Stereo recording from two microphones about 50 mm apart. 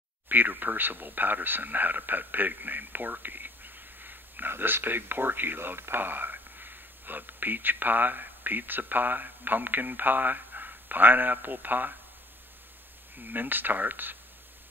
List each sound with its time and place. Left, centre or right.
0.3 s speech: right
13.2 s speech: right